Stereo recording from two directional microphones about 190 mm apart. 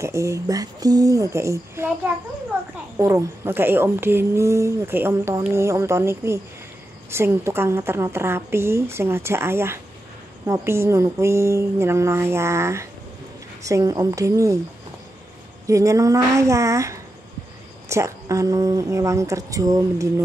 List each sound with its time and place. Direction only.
0.0 s a woman's voice: 15° right (ahead or behind)
3.0 s a woman's voice: 15° right (ahead or behind)
15.6 s a woman's voice: 15° right (ahead or behind)